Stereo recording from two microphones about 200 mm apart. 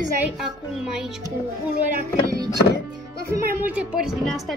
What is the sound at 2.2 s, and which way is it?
Music, 15° right (ahead or behind).